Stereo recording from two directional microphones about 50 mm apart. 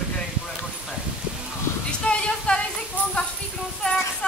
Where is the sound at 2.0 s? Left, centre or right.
Left.